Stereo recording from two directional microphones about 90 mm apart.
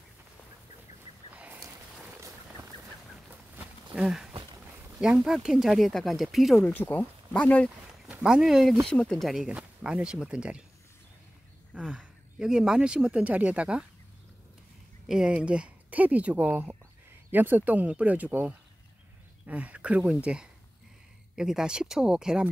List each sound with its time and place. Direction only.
1.3 s a sound: 15° right (ahead or behind)
3.3 s a sound: 15° right (ahead or behind)
4.0 s speech: 5° right (ahead or behind)
4.3 s a sound: 55° right (ahead or behind)
5.0 s speech: 10° right (ahead or behind)
6.6 s speech: 20° left (ahead or behind)
8.2 s speech: 5° right (ahead or behind)
8.8 s speech: 5° left (ahead or behind)
9.5 s speech: 10° right (ahead or behind)
11.7 s speech: 10° right (ahead or behind)
15.0 s speech: 10° right (ahead or behind)